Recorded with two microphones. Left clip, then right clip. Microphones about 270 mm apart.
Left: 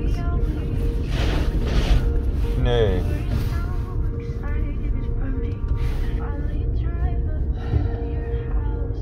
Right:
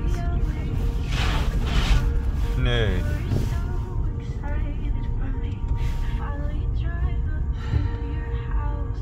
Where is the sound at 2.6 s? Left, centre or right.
Centre.